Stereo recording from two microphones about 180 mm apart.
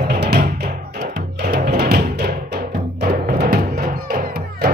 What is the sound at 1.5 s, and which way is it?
Music, 60° right (ahead or behind).